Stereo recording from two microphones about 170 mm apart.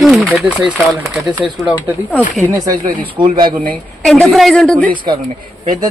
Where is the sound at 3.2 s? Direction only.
30° right (ahead or behind).